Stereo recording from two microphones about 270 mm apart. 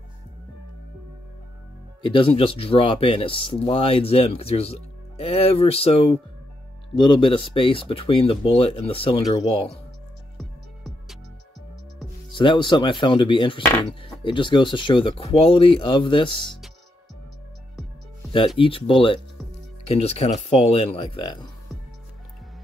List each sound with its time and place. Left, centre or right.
2.0 s speech: centre
10.3 s music: centre
12.3 s speech: centre
18.6 s speech: centre